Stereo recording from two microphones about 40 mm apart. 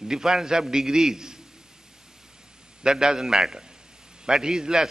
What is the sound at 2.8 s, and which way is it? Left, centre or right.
Speech, centre.